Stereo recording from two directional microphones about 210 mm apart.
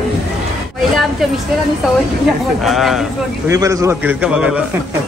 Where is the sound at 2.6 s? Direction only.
Centre (ahead or behind).